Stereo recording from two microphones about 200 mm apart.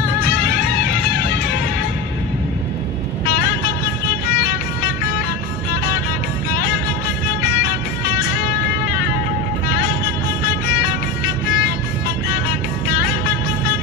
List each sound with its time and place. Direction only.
0.0 s music: 45° left (ahead or behind)
3.3 s vehicle: 50° left (ahead or behind)
4.3 s music: 50° left (ahead or behind)
6.5 s music: 50° left (ahead or behind)